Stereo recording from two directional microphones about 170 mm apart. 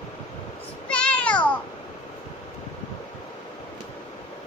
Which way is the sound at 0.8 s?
5° left (ahead or behind).